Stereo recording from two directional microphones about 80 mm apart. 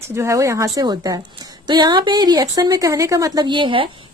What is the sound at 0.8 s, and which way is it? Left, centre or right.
A woman's voice, right.